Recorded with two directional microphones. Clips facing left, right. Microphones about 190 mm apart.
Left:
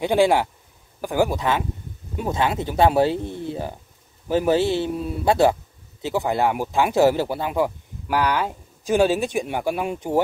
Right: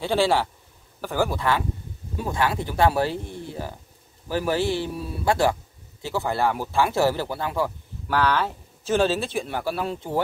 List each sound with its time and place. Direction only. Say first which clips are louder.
0.0 s speech: left 4 dB; 15° left (ahead or behind)